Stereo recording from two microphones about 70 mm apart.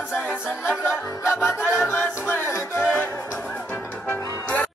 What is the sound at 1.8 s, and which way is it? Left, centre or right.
Music, left.